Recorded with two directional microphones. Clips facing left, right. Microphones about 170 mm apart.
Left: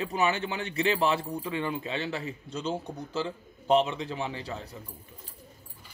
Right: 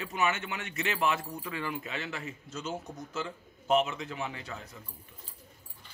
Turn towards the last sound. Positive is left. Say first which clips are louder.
# left 4 dB
turn(degrees=30)  # may be behind; listen again after turning